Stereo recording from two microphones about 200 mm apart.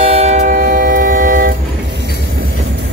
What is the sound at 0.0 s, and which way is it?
Train, 30° right (ahead or behind).